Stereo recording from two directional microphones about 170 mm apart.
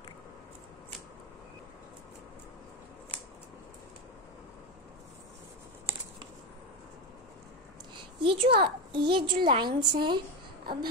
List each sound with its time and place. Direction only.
7.9 s a child's voice: 30° right (ahead or behind)